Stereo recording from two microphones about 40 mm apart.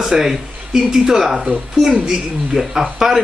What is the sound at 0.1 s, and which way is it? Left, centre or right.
A man's voice, centre.